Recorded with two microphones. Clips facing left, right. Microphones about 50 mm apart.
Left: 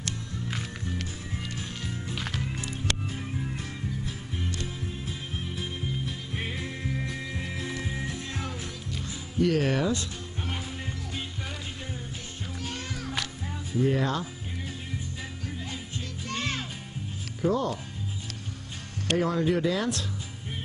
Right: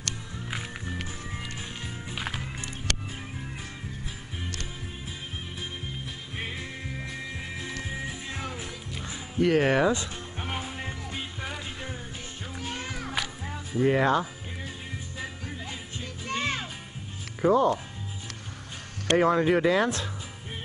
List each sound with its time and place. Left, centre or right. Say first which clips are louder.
0.5 s music: right 1 dB; centre
2.0 s music: right 1 dB; centre
5.6 s music: left 4 dB; centre
9.4 s music: right 3 dB; right
12.5 s music: right 2 dB; centre
13.7 s speech: right 4 dB; right
16.3 s music: right 3 dB; centre
17.4 s speech: right 5 dB; right
19.1 s speech: right 4 dB; right